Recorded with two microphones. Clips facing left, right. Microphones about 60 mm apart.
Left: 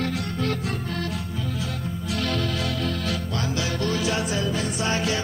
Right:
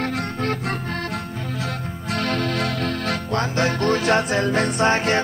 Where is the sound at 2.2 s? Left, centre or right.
Right.